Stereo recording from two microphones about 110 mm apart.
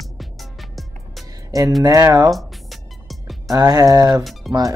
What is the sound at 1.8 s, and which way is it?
Speech, 30° right (ahead or behind).